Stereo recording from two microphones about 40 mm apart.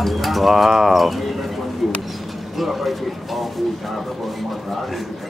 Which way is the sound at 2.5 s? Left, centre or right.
Centre.